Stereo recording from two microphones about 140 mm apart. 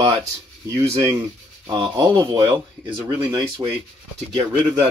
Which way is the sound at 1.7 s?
35° right (ahead or behind).